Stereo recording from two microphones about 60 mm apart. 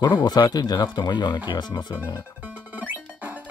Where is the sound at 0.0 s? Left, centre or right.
Left.